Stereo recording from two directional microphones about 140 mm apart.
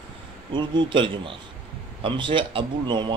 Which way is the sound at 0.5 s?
35° right (ahead or behind).